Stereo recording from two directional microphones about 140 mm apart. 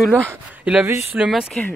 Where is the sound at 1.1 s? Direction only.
5° right (ahead or behind).